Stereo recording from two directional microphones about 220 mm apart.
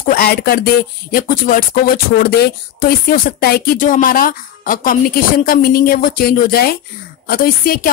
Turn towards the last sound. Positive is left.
turn(degrees=40)  # may be behind; listen again after turning